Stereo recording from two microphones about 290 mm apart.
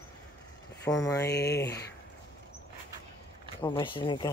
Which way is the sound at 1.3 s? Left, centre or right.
Left.